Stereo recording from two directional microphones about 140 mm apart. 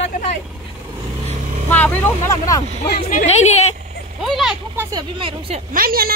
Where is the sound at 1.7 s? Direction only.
10° left (ahead or behind).